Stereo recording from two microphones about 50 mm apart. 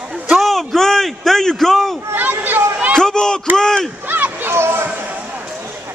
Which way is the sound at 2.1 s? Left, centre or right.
Right.